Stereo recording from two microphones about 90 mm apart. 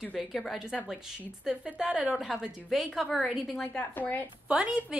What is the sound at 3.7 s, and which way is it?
Speech, 20° left (ahead or behind).